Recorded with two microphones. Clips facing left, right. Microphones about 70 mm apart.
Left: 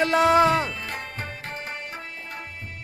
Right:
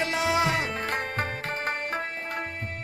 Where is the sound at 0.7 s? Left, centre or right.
Right.